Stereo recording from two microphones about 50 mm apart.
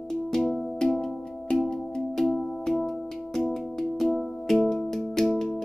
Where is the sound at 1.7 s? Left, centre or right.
Centre.